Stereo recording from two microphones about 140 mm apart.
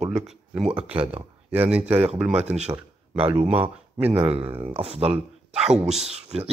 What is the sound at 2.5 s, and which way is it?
Speech, 50° right (ahead or behind).